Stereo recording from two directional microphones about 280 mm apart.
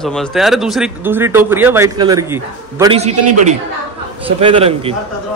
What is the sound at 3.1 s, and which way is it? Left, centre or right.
Speech, right.